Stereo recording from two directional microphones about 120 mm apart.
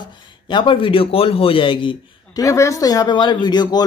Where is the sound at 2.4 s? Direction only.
25° left (ahead or behind).